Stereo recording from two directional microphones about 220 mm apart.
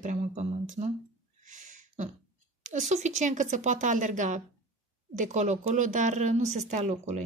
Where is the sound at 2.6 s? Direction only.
35° right (ahead or behind).